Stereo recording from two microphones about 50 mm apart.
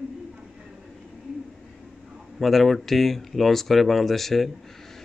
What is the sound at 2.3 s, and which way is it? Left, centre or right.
Speech, centre.